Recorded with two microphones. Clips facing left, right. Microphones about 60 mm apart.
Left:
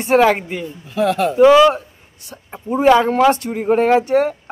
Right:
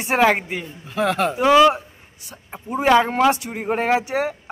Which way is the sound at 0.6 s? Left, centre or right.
Right.